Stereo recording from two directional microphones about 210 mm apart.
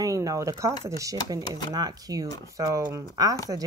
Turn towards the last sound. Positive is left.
turn(degrees=-15)  # may be behind; listen again after turning